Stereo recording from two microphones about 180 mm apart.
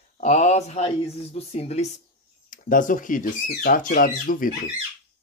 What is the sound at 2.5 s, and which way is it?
Speech, 45° left (ahead or behind).